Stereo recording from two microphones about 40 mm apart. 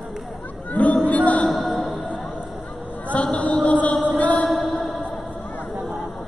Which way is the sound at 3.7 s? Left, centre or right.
Left.